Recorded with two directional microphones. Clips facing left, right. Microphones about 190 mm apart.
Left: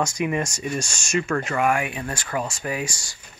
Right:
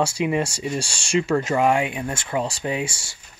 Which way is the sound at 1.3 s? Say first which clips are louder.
Right 3 dB; 20° right (ahead or behind).